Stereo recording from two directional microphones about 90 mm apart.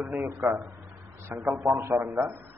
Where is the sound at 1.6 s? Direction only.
30° right (ahead or behind).